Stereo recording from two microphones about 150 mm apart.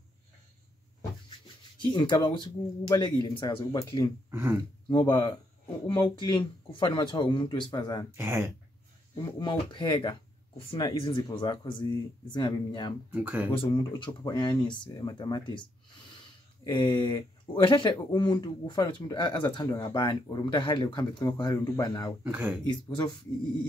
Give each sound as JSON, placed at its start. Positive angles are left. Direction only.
{"t": 1.8, "sound": "speech", "side_deg": 30}
{"t": 4.3, "sound": "speech", "side_deg": -15}
{"t": 4.8, "sound": "speech", "side_deg": 30}
{"t": 8.2, "sound": "speech", "side_deg": -15}
{"t": 9.1, "sound": "speech", "side_deg": 30}
{"t": 13.1, "sound": "speech", "side_deg": -10}
{"t": 13.5, "sound": "speech", "side_deg": 35}
{"t": 16.6, "sound": "speech", "side_deg": 30}
{"t": 22.2, "sound": "speech", "side_deg": -10}
{"t": 22.7, "sound": "speech", "side_deg": 30}